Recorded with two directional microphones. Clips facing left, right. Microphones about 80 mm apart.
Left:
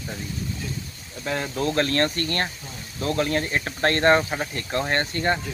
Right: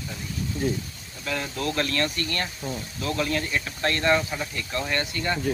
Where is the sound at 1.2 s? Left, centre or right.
Left.